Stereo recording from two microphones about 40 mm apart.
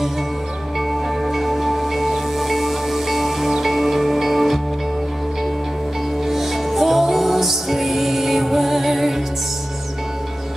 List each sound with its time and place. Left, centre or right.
0.7 s music: centre
6.2 s music: centre